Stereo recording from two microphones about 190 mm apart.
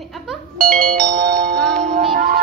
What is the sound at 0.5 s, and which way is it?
Music, 45° right (ahead or behind).